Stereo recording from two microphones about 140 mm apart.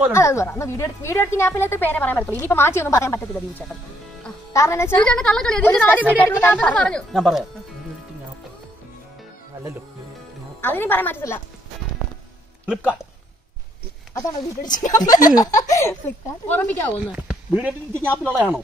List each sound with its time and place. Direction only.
0.1 s a woman's voice: 20° left (ahead or behind)
5.0 s a woman's voice: 5° left (ahead or behind)
10.6 s a woman's voice: 15° left (ahead or behind)
14.6 s speech: 65° left (ahead or behind)
15.0 s a woman's voice: 25° left (ahead or behind); by 16.9 s 10° left (ahead or behind)
17.0 s speech: 10° right (ahead or behind)
18.0 s a woman's voice: 10° left (ahead or behind)